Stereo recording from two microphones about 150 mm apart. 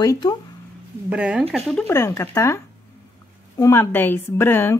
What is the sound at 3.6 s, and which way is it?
Speech, 15° left (ahead or behind).